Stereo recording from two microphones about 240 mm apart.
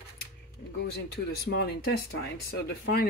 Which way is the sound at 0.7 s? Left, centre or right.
Left.